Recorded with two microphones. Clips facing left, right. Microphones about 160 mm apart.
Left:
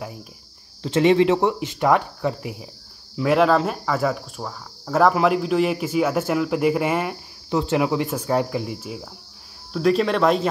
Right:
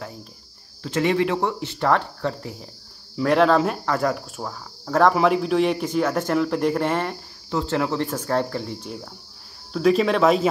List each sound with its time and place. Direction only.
0.8 s cricket: 20° left (ahead or behind); by 9.1 s 5° left (ahead or behind)
9.7 s speech: centre (ahead or behind)